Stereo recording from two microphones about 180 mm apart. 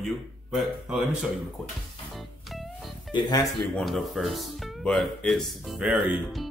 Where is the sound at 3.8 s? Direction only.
Centre (ahead or behind).